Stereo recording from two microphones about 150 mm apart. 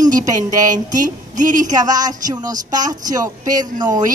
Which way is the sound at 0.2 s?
25° right (ahead or behind).